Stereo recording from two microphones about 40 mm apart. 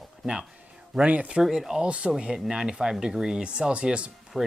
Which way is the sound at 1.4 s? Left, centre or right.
Centre.